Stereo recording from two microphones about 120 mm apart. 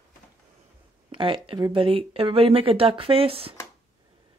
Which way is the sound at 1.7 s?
50° right (ahead or behind).